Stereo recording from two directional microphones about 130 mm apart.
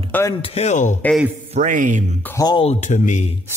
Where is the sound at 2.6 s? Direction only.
60° left (ahead or behind).